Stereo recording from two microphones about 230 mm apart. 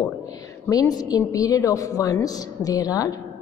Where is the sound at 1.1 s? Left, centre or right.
Centre.